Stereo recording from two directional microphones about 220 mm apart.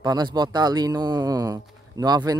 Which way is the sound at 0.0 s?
20° right (ahead or behind).